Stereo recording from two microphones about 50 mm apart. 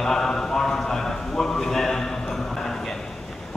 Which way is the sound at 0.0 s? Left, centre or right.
Centre.